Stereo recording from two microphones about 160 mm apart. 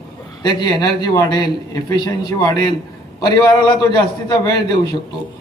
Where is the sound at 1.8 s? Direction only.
25° left (ahead or behind).